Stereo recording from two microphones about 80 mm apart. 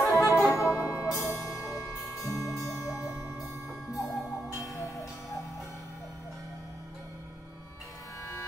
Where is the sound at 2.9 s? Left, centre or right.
Centre.